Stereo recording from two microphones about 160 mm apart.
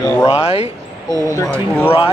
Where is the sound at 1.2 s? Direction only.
20° left (ahead or behind).